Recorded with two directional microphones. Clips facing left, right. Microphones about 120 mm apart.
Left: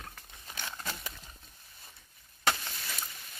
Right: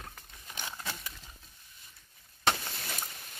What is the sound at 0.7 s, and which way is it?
Horse, centre (ahead or behind).